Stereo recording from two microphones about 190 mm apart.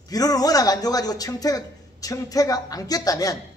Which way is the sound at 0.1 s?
20° left (ahead or behind).